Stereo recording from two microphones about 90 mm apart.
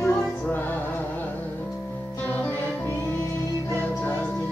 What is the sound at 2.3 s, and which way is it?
Music, 20° left (ahead or behind).